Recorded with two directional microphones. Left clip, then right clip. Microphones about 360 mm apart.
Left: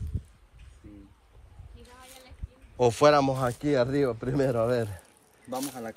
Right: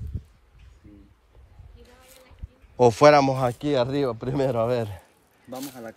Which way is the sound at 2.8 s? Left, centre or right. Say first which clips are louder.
Right 5 dB; centre.